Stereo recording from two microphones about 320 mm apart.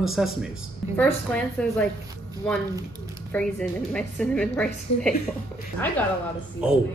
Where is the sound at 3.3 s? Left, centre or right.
Centre.